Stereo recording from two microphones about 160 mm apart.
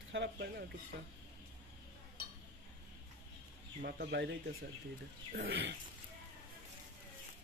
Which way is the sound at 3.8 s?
90° right.